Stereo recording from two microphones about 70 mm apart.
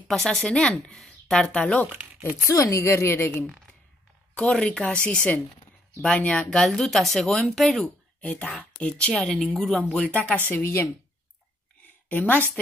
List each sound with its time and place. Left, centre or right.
0.1 s a woman's voice: centre
2.4 s a woman's voice: left
4.4 s a woman's voice: centre
7.8 s a woman's voice: centre
9.3 s a woman's voice: centre
10.5 s a woman's voice: left
12.1 s a woman's voice: left